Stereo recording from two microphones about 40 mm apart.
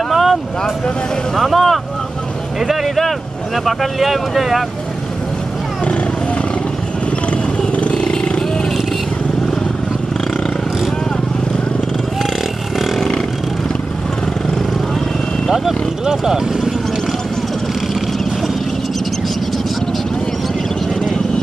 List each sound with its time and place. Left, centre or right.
0.1 s vehicle: centre
1.3 s speech: centre
7.2 s vehicle: left
15.5 s speech: centre